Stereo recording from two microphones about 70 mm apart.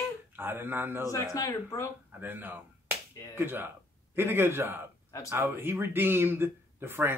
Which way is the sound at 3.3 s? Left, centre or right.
Right.